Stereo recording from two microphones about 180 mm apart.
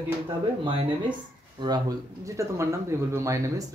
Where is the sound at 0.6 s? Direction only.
25° right (ahead or behind).